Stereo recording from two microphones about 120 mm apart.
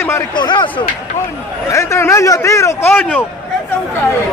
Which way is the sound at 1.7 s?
25° left (ahead or behind).